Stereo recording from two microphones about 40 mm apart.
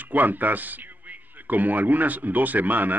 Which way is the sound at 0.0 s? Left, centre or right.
Right.